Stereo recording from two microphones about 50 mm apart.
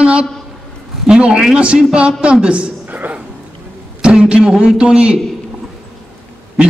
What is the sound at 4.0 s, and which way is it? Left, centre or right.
A man's voice, right.